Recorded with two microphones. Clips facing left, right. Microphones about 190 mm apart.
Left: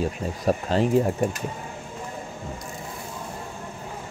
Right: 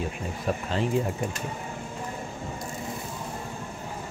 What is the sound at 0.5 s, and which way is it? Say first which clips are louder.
Speech: left 6 dB; 35° left (ahead or behind).